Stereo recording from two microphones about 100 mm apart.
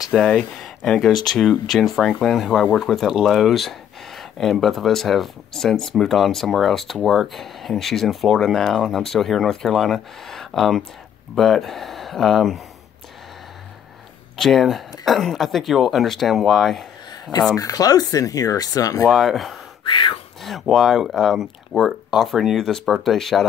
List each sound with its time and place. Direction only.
0.0 s speech: 5° left (ahead or behind)
14.3 s speech: centre (ahead or behind)
17.6 s speech: 35° left (ahead or behind)
19.0 s speech: 5° right (ahead or behind)
19.9 s speech: 55° left (ahead or behind)
20.4 s speech: centre (ahead or behind)